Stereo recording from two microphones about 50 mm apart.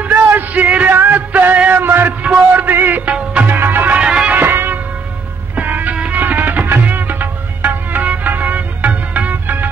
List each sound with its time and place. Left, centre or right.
0.3 s a sound: right
0.9 s music: right
1.7 s a sound: right
2.2 s music: right
2.7 s music: right
3.1 s music: right
3.4 s music: right
3.9 s music: centre
4.4 s music: right